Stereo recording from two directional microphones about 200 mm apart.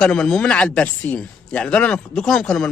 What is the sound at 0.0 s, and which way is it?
Speech, 5° left (ahead or behind).